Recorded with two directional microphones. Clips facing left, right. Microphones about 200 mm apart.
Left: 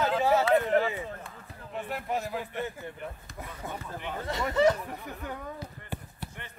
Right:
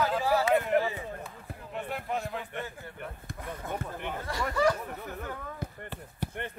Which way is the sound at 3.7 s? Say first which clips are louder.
Right 5 dB; 55° right (ahead or behind).